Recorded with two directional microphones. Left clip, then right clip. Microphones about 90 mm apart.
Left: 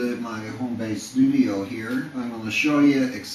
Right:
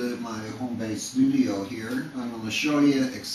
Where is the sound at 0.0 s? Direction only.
5° right (ahead or behind).